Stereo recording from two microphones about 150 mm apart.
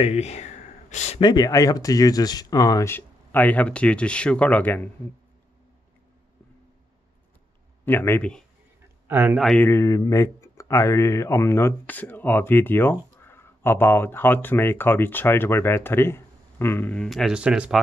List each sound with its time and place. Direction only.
0.0 s speech: 45° left (ahead or behind)
1.2 s speech: 25° left (ahead or behind); by 4.8 s 10° left (ahead or behind)
7.8 s speech: 15° left (ahead or behind)
9.0 s speech: 15° right (ahead or behind)
9.4 s speech: 5° left (ahead or behind)
9.7 s speech: 20° left (ahead or behind); by 17.7 s 5° right (ahead or behind)